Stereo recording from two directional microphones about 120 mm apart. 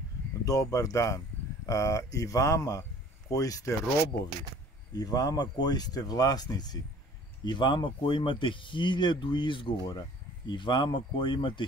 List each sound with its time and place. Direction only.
0.5 s speech: 30° left (ahead or behind)
4.9 s speech: 30° left (ahead or behind)